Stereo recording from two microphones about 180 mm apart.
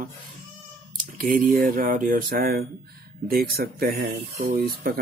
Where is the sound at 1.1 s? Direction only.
50° right (ahead or behind).